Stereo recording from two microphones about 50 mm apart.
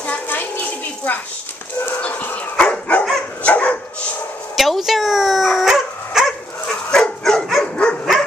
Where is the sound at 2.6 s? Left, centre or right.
Left.